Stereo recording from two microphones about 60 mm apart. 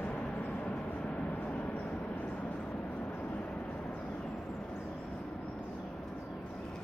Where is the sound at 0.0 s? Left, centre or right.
Centre.